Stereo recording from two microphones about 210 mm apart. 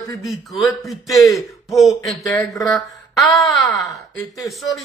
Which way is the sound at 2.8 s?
Centre (ahead or behind).